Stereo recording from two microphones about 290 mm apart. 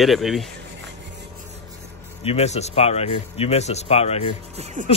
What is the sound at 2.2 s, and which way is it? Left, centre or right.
Speech, left.